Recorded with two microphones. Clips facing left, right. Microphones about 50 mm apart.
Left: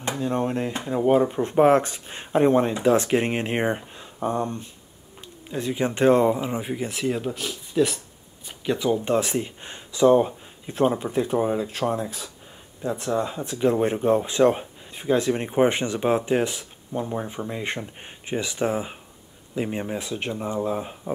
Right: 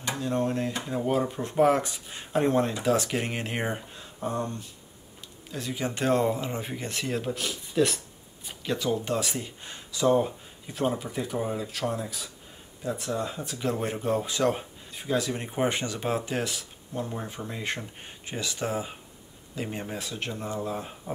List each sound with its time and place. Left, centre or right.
0.0 s speech: left; by 8.0 s centre
8.6 s speech: centre
10.7 s speech: left; by 21.1 s centre